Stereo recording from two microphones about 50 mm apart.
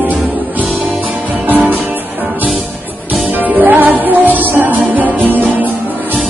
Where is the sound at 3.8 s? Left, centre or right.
Right.